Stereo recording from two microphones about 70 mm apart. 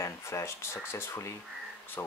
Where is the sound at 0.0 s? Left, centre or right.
Left.